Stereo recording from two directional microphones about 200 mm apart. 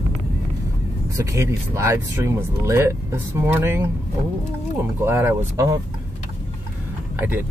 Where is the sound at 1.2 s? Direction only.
15° right (ahead or behind).